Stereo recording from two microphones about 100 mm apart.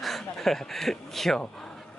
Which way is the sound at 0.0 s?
Centre (ahead or behind).